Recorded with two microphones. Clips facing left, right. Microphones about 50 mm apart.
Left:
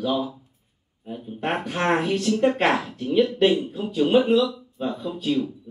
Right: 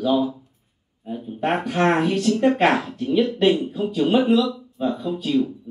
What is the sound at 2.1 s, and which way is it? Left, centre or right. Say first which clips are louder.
Speech: right 2 dB; centre.